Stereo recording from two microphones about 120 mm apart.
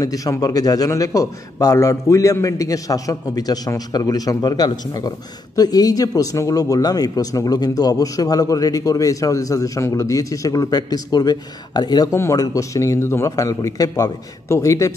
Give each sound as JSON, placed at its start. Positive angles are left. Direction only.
{"t": 0.0, "sound": "a man's voice", "side_deg": 30}